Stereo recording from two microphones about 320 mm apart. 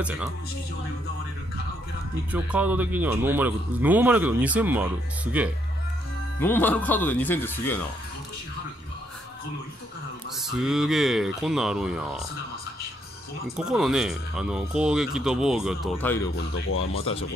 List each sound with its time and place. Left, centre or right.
0.0 s speech: centre
2.3 s speech: centre
6.4 s speech: centre
10.4 s speech: centre
13.6 s speech: centre
16.5 s speech: left
17.0 s speech: centre